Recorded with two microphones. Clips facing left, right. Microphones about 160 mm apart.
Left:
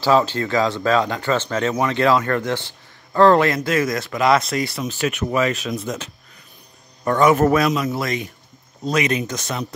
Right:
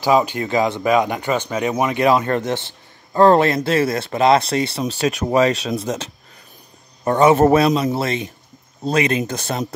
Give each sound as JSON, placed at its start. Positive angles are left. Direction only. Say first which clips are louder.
{"t": 0.0, "sound": "speech", "louder": "even", "side_deg": -15}
{"t": 7.1, "sound": "speech", "louder": "right 3 dB", "side_deg": -25}